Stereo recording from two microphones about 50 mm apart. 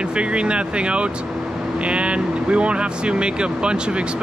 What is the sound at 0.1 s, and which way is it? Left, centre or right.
Speech, right.